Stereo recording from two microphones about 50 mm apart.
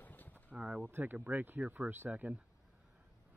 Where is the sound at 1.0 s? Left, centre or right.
Right.